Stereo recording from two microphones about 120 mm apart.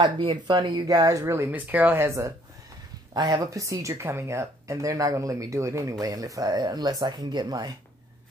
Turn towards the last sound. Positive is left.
turn(degrees=-35)  # may be behind; listen again after turning